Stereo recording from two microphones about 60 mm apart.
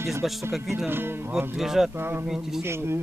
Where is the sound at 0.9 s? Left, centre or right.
Right.